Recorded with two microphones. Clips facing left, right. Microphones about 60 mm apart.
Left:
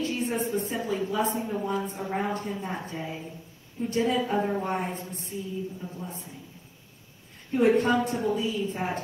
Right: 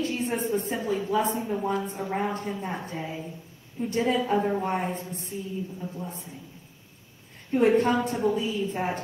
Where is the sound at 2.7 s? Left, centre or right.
Right.